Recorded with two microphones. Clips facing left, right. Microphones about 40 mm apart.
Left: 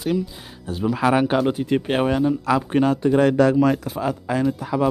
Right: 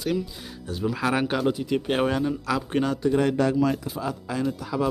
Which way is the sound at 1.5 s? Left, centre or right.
Left.